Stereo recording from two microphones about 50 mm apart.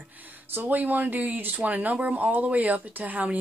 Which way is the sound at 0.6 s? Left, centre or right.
Right.